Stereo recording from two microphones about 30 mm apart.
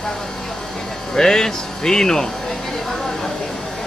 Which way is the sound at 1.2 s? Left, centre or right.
Centre.